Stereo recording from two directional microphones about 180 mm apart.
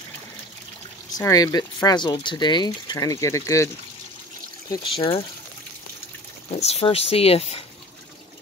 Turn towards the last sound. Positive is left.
turn(degrees=35)  # may be behind; listen again after turning